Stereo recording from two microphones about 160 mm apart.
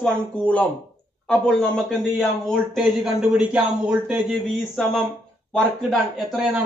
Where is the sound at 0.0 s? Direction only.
10° left (ahead or behind).